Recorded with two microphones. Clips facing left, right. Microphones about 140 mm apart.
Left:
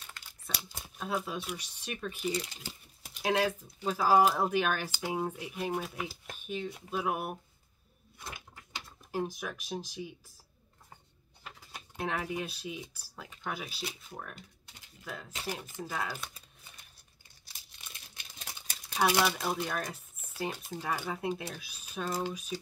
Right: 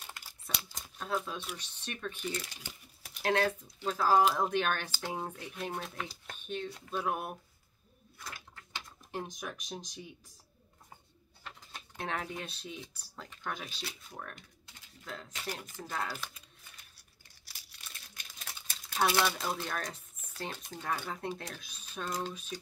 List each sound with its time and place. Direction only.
0.6 s speech: 10° left (ahead or behind)
8.2 s a sound: 20° left (ahead or behind)
8.8 s speech: 5° left (ahead or behind)
11.4 s speech: 5° left (ahead or behind)
15.0 s speech: 5° left (ahead or behind)
17.5 s crumpling: 20° left (ahead or behind)
18.9 s speech: 10° left (ahead or behind)